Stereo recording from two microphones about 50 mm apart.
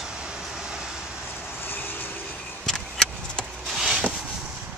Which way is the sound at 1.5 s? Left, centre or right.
Left.